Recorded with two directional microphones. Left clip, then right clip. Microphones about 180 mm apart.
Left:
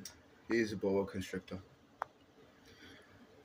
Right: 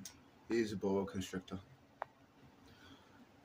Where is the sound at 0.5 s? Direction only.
5° right (ahead or behind).